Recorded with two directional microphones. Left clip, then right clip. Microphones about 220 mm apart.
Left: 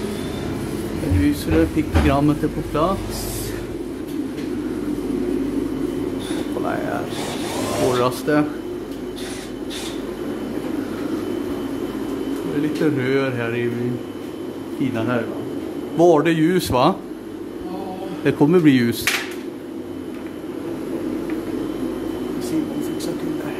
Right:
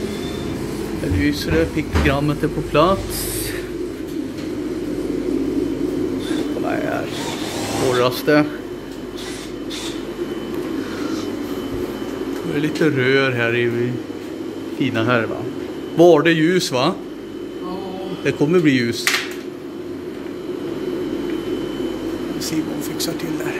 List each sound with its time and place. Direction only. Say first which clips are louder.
1.2 s speech: even; 10° left (ahead or behind)
2.7 s a man's voice: right 5 dB; 5° right (ahead or behind)
6.6 s a sound: even; 15° left (ahead or behind)
8.0 s a man's voice: right 3 dB; 5° left (ahead or behind)
12.8 s a man's voice: right 5 dB; centre (ahead or behind)
14.8 s speech: right 4 dB; 5° right (ahead or behind)
16.0 s speech: right 3 dB; 5° left (ahead or behind)
18.2 s a man's voice: left 1 dB; 20° left (ahead or behind)